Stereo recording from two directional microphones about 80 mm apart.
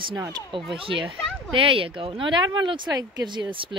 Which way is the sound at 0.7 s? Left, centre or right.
Right.